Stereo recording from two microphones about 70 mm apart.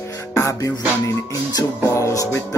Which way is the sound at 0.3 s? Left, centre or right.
Left.